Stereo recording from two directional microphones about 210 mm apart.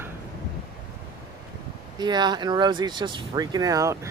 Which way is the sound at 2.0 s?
20° right (ahead or behind).